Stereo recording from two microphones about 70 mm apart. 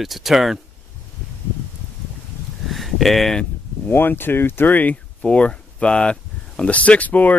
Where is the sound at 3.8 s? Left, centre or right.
Left.